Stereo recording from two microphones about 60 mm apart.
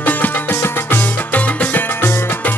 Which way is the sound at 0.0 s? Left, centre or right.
Left.